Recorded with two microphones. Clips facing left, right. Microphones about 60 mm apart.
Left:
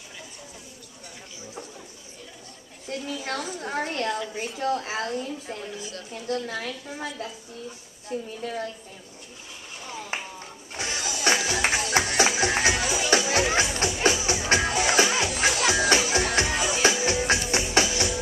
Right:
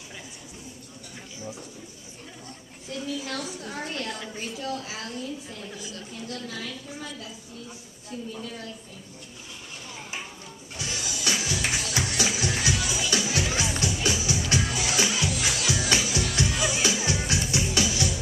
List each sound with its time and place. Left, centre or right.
2.9 s a woman's voice: left
10.1 s a sound: left
10.7 s music: left